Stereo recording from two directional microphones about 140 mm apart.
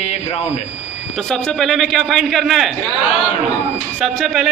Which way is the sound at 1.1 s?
5° left (ahead or behind).